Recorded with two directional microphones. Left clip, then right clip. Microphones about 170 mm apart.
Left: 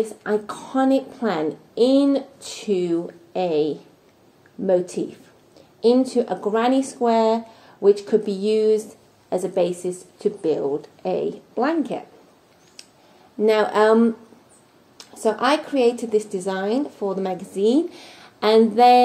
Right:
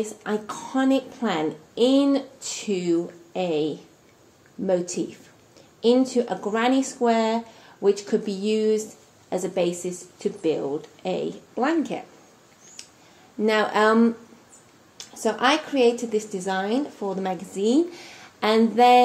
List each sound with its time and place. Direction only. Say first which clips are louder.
0.0 s a woman's voice: left 5 dB; 25° left (ahead or behind)
12.8 s a sound: right 1 dB; 25° left (ahead or behind)
13.4 s a woman's voice: left 3 dB; 25° left (ahead or behind)